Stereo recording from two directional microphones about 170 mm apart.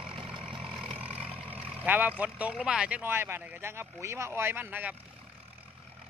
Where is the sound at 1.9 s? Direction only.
10° right (ahead or behind).